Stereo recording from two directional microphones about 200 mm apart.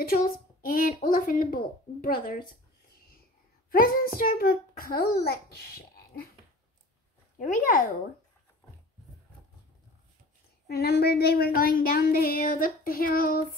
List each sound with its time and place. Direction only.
0.0 s speech: 45° left (ahead or behind)
3.7 s speech: 45° left (ahead or behind)
7.3 s speech: 40° left (ahead or behind)
10.7 s speech: 50° left (ahead or behind)